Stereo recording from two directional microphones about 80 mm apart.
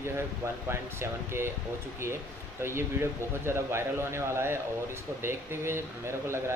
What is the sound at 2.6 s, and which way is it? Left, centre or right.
Speech, right.